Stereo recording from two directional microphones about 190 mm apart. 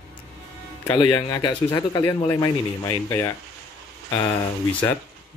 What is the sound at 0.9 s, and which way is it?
Speech, 20° left (ahead or behind).